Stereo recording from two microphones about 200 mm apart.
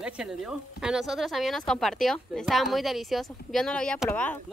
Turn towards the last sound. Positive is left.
turn(degrees=10)  # may be behind; listen again after turning